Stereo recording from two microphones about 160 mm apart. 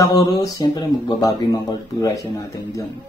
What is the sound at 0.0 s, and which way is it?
Speech, 20° left (ahead or behind).